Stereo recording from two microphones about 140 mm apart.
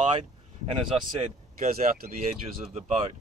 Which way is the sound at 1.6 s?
70° right (ahead or behind).